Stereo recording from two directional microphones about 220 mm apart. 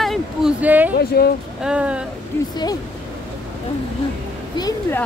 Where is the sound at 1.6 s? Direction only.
5° right (ahead or behind).